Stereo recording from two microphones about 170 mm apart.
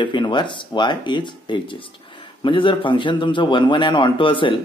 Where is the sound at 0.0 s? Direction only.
30° left (ahead or behind).